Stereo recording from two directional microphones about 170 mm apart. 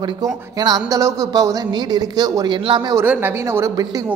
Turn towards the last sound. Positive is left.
turn(degrees=-20)  # may be behind; listen again after turning